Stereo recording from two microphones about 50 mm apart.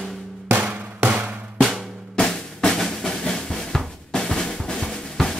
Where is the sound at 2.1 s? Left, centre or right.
Centre.